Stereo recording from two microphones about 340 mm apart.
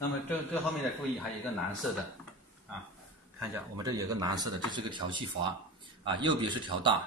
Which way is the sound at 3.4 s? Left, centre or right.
Centre.